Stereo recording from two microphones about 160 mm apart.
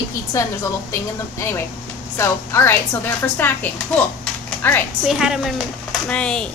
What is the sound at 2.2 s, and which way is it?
A woman's voice, 15° left (ahead or behind).